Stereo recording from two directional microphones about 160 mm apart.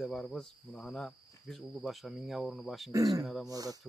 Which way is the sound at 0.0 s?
Centre (ahead or behind).